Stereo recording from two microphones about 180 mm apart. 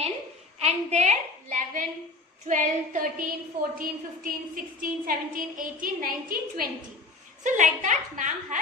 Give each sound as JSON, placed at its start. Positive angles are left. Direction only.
{"t": 0.6, "sound": "a woman's voice", "side_deg": -35}